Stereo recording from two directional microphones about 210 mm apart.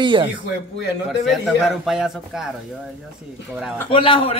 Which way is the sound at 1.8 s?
5° right (ahead or behind).